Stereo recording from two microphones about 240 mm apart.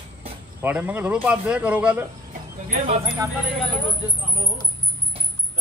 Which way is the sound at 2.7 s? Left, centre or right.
Right.